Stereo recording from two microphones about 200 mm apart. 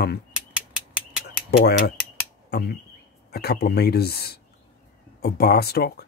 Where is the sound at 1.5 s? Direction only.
55° left (ahead or behind).